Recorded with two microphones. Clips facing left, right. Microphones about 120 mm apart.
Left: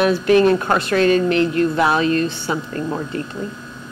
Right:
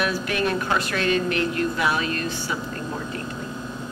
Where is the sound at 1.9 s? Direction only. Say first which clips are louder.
Left 8 dB; 30° left (ahead or behind).